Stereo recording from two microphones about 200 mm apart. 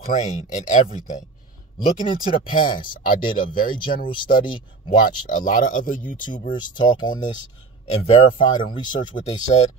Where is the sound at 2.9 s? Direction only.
45° left (ahead or behind).